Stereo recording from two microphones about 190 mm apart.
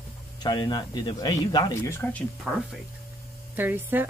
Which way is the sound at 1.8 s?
10° left (ahead or behind).